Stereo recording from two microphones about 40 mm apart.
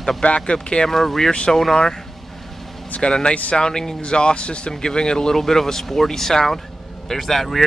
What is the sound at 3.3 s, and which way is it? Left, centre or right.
Speech, left.